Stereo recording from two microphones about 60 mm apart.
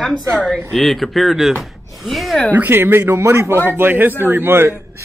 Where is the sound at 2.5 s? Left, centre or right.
Right.